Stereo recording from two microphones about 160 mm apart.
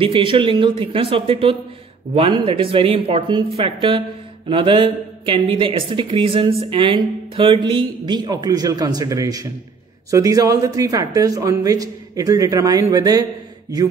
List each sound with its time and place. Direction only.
0.0 s speech: 35° right (ahead or behind)